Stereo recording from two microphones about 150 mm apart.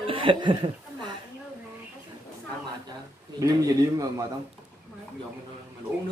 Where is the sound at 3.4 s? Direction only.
20° right (ahead or behind).